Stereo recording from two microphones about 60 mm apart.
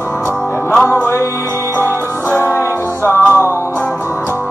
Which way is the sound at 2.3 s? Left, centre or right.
Left.